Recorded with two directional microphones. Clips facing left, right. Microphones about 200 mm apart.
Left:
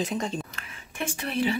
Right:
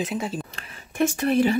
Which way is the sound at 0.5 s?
45° right (ahead or behind).